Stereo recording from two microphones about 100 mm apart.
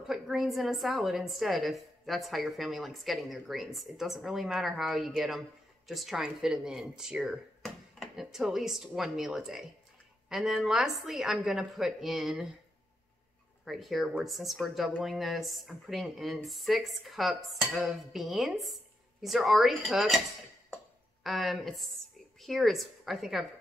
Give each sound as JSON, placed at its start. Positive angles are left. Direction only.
{"t": 0.0, "sound": "a woman's voice", "side_deg": -5}
{"t": 13.7, "sound": "a woman's voice", "side_deg": 0}
{"t": 20.7, "sound": "a sound", "side_deg": 0}
{"t": 22.4, "sound": "a woman's voice", "side_deg": 0}